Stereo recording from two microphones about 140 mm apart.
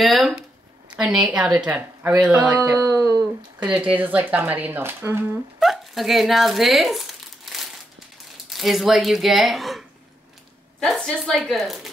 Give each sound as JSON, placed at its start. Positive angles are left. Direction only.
{"t": 0.0, "sound": "a woman's voice", "side_deg": 0}
{"t": 2.5, "sound": "speech", "side_deg": -20}
{"t": 3.6, "sound": "a woman's voice", "side_deg": -10}
{"t": 5.6, "sound": "crumpling", "side_deg": 0}
{"t": 8.5, "sound": "speech", "side_deg": 0}